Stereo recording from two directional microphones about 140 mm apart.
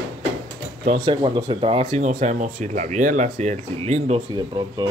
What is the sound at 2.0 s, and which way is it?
Speech, 60° right (ahead or behind).